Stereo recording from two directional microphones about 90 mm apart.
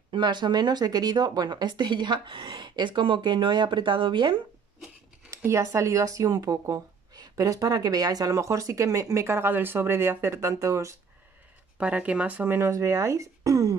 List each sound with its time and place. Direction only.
0.1 s speech: 60° right (ahead or behind)
5.3 s speech: 30° right (ahead or behind)
11.8 s speech: 15° right (ahead or behind)
12.5 s speech: 30° right (ahead or behind)